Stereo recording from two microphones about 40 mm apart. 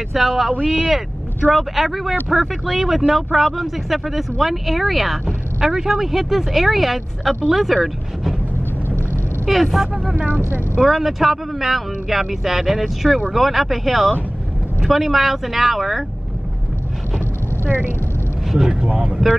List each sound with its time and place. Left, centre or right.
0.1 s speech: centre
5.2 s speech: centre
9.5 s speech: centre
10.1 s speech: right
10.8 s speech: centre
17.6 s speech: right
18.5 s vehicle: centre
18.9 s speech: right